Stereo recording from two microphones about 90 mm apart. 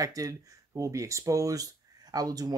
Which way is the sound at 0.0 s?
40° right (ahead or behind).